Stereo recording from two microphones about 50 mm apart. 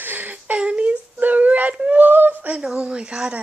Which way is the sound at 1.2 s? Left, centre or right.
Right.